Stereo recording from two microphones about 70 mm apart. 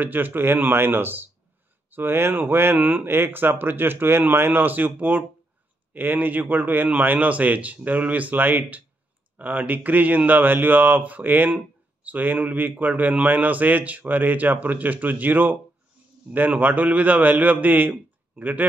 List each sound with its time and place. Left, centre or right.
0.0 s speech: right